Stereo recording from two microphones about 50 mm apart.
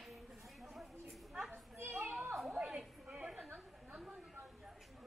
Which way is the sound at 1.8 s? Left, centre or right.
Right.